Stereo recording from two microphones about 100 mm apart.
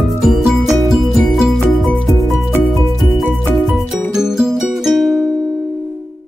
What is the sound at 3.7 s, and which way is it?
Music, 5° right (ahead or behind).